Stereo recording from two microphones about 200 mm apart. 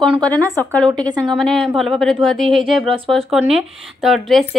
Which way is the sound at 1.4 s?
Centre (ahead or behind).